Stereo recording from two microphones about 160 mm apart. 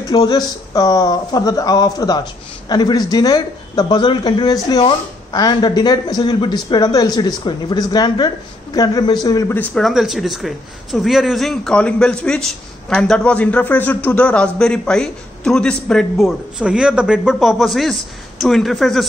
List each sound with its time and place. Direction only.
0.1 s speech: 25° left (ahead or behind)
9.6 s a man's voice: centre (ahead or behind)